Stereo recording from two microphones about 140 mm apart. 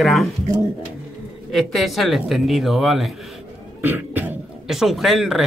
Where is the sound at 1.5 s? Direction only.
Centre (ahead or behind).